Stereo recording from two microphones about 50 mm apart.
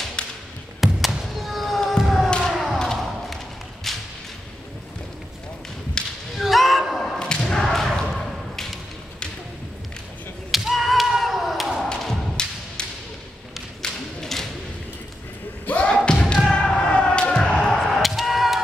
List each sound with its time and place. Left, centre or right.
0.8 s basketball bounce: centre
1.2 s a sound: centre
2.2 s a sound: centre
2.5 s thump: centre
3.9 s whip: centre
6.0 s whip: centre
6.3 s a sound: centre
7.2 s thump: centre
10.5 s whip: centre
11.9 s thump: centre
13.8 s thump: centre
15.6 s thump: left
16.3 s basketball bounce: centre